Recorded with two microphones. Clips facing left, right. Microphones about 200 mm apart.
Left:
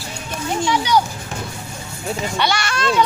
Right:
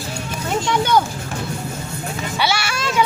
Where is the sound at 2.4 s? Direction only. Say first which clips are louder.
Even; 5° right (ahead or behind).